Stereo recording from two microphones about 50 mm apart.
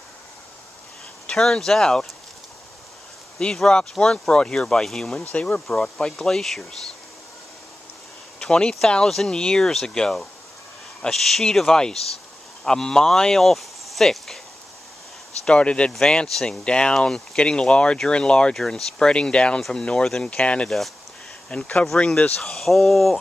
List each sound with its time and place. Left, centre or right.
1.2 s speech: centre
3.5 s speech: centre
5.3 s speech: left
5.7 s speech: centre
8.4 s speech: centre
15.4 s speech: left
22.6 s speech: centre